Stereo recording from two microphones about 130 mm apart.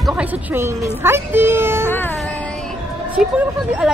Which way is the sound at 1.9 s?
15° left (ahead or behind).